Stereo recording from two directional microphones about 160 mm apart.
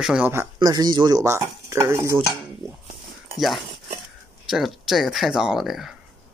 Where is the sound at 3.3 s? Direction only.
Centre (ahead or behind).